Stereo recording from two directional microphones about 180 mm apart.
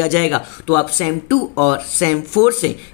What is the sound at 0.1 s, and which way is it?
Speech, 20° left (ahead or behind).